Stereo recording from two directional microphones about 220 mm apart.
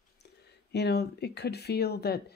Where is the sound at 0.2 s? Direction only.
50° left (ahead or behind).